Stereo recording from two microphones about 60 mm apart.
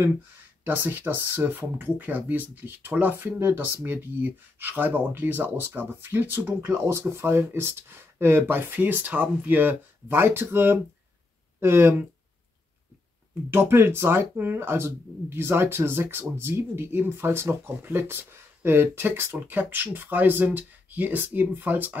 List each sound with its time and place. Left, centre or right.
0.7 s speech: right
13.5 s speech: right
19.3 s speech: right